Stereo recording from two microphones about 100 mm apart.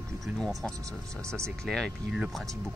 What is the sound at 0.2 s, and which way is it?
Speech, centre (ahead or behind).